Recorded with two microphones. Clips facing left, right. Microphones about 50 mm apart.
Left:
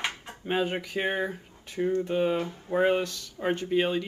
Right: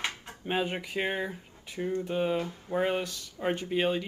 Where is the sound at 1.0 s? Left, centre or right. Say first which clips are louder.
Left 3 dB; centre.